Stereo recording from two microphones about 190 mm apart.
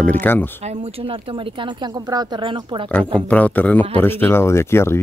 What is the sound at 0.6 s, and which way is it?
Speech, 35° right (ahead or behind).